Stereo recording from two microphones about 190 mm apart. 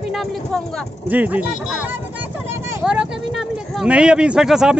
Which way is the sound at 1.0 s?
10° right (ahead or behind).